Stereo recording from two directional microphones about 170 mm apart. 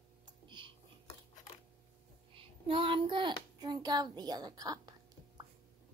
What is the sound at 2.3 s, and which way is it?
A child's voice, 30° right (ahead or behind).